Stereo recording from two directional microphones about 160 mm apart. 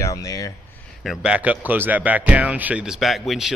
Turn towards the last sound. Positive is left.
turn(degrees=0)  # may be behind; listen again after turning